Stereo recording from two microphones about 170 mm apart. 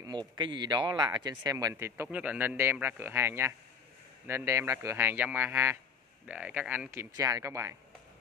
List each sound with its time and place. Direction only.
0.0 s speech: 25° right (ahead or behind)